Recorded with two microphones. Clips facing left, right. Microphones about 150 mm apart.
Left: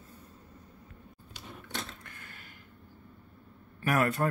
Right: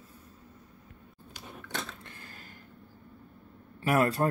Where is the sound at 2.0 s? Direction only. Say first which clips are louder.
Right 2 dB; 30° right (ahead or behind).